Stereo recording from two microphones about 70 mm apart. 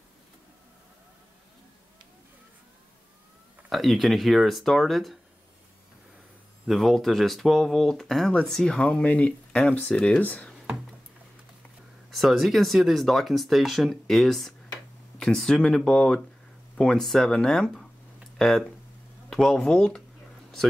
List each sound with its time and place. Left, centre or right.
3.7 s speech: centre
6.7 s speech: centre
12.1 s speech: centre
19.2 s speech: centre